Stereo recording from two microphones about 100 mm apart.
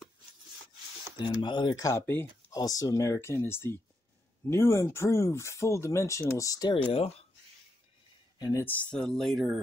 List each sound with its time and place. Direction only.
1.1 s speech: 50° left (ahead or behind)
1.8 s speech: 30° left (ahead or behind)
8.4 s speech: 35° left (ahead or behind)
8.6 s speech: 10° left (ahead or behind)